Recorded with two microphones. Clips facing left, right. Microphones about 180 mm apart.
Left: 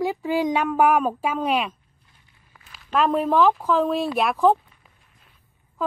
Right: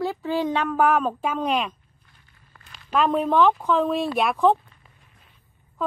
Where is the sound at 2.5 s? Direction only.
5° left (ahead or behind).